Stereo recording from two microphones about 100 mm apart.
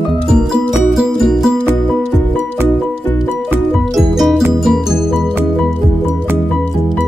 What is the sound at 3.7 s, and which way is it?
Music, centre (ahead or behind).